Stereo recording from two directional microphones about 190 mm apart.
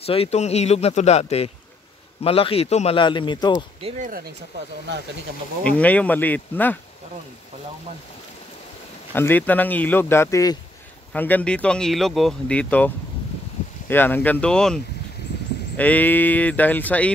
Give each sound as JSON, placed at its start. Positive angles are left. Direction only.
{"t": 0.0, "sound": "a man's voice", "side_deg": 30}
{"t": 5.6, "sound": "speech", "side_deg": 5}
{"t": 9.1, "sound": "speech", "side_deg": 10}